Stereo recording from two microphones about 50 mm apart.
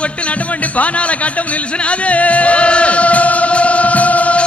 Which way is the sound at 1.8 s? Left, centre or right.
Left.